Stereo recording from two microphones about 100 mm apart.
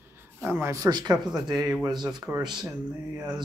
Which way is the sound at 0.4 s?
25° right (ahead or behind).